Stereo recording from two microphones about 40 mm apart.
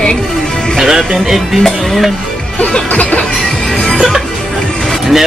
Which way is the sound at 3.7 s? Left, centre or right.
Centre.